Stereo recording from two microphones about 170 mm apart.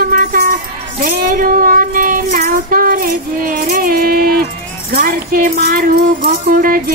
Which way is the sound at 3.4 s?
55° right (ahead or behind).